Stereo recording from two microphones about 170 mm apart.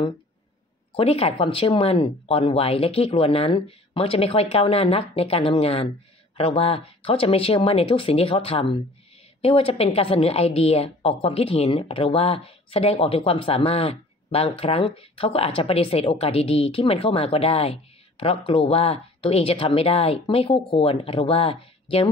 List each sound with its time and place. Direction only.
0.9 s a woman's voice: 35° left (ahead or behind)